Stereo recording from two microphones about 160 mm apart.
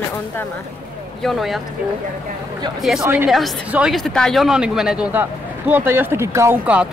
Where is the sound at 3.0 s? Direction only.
10° right (ahead or behind).